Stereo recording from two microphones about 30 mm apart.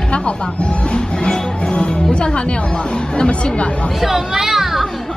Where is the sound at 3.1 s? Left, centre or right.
Left.